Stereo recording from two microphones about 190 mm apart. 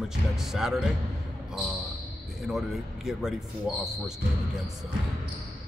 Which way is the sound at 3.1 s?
Centre (ahead or behind).